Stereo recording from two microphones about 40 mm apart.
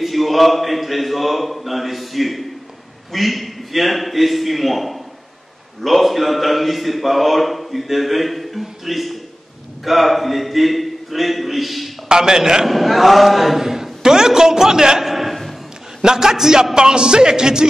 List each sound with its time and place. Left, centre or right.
0.0 s a man's voice: centre
12.1 s speech: centre
12.6 s a man's voice: centre
16.0 s speech: centre